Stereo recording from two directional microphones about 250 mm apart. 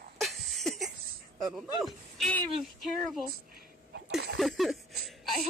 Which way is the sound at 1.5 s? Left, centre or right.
Centre.